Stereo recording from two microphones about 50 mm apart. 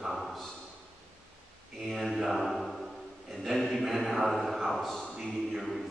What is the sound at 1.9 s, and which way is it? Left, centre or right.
Speech, centre.